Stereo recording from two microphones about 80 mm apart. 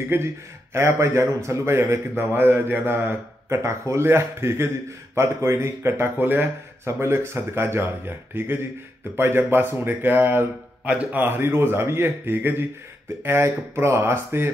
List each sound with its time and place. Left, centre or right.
0.1 s a man's voice: right